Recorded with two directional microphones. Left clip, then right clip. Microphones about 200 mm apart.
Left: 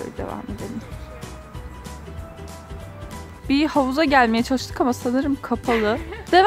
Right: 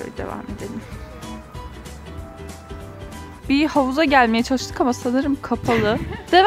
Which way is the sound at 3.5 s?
5° right (ahead or behind).